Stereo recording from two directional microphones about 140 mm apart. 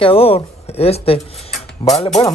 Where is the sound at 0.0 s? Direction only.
45° left (ahead or behind).